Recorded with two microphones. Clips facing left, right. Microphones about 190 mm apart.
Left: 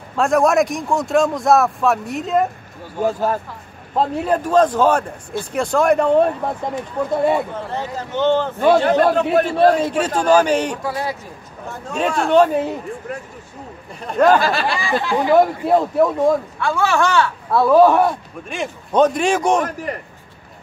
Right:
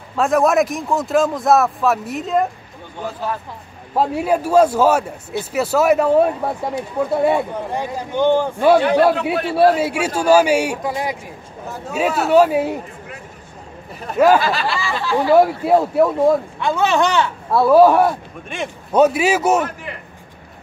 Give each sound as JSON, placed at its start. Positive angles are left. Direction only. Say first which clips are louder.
{"t": 0.1, "sound": "speech", "louder": "even", "side_deg": 0}
{"t": 3.0, "sound": "a man's voice", "louder": "left 6 dB", "side_deg": 45}
{"t": 3.9, "sound": "a man's voice", "louder": "right 1 dB", "side_deg": -10}
{"t": 9.1, "sound": "a man's voice", "louder": "left 4 dB", "side_deg": 45}
{"t": 9.5, "sound": "a man's voice", "louder": "even", "side_deg": -5}
{"t": 14.0, "sound": "a man's voice", "louder": "right 1 dB", "side_deg": -5}
{"t": 14.8, "sound": "speech", "louder": "left 1 dB", "side_deg": 20}
{"t": 15.3, "sound": "a man's voice", "louder": "right 1 dB", "side_deg": -10}
{"t": 16.5, "sound": "a man's voice", "louder": "right 1 dB", "side_deg": -20}
{"t": 19.6, "sound": "a man's voice", "louder": "left 2 dB", "side_deg": 40}